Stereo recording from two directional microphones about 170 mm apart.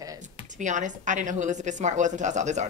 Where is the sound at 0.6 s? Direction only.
45° right (ahead or behind).